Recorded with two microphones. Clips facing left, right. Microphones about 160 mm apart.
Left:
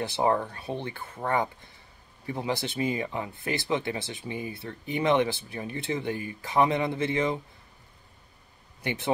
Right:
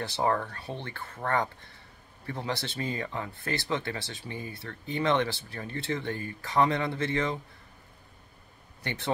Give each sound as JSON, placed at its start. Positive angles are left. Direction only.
{"t": 0.0, "sound": "speech", "side_deg": 20}
{"t": 8.8, "sound": "speech", "side_deg": 15}